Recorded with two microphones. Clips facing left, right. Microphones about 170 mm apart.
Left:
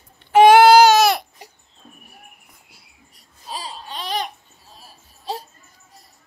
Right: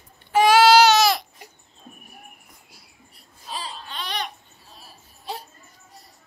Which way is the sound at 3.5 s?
40° left (ahead or behind).